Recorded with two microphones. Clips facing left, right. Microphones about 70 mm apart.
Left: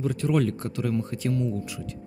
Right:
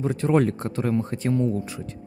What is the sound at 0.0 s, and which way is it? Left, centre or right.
A man's voice, right.